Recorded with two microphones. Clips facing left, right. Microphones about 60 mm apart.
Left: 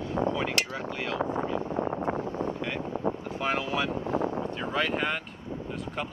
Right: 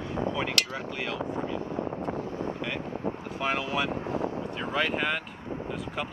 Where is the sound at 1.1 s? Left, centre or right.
Left.